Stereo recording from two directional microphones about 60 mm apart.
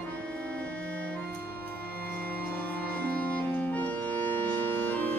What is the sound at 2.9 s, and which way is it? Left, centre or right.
Music, left.